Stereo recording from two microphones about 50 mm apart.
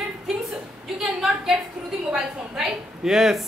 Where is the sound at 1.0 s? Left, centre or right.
Centre.